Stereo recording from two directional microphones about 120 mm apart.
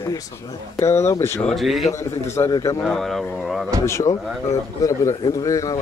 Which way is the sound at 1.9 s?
25° left (ahead or behind).